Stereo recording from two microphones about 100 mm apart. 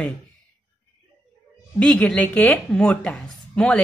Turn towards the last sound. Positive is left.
turn(degrees=10)  # may be behind; listen again after turning